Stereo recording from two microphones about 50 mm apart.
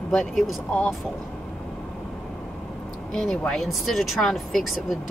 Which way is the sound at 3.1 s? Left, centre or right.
Centre.